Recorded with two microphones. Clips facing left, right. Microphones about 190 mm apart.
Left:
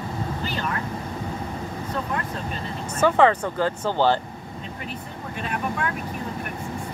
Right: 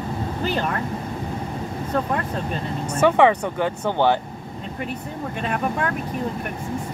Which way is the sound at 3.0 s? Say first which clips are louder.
Right 2 dB; 15° right (ahead or behind).